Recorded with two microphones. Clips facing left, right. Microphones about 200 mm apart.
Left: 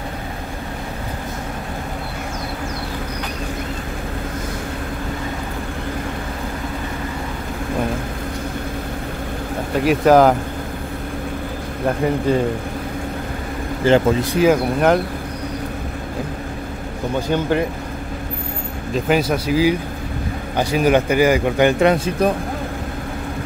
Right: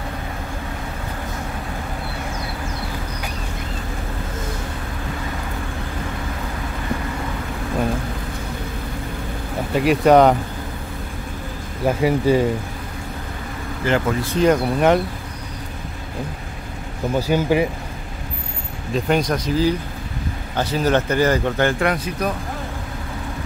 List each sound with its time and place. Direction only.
9.8 s speech: centre (ahead or behind)
11.8 s speech: 5° right (ahead or behind)
13.8 s speech: 25° left (ahead or behind)
14.2 s speech: 10° left (ahead or behind)
17.3 s speech: 10° right (ahead or behind)
18.9 s speech: 5° left (ahead or behind); by 22.3 s 25° left (ahead or behind)